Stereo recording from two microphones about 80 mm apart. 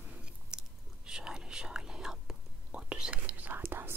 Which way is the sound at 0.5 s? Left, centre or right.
Centre.